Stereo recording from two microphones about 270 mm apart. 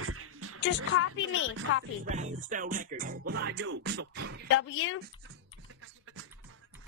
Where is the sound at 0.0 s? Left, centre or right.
Right.